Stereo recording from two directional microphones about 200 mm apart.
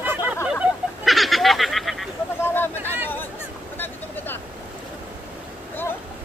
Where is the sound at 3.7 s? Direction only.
10° left (ahead or behind).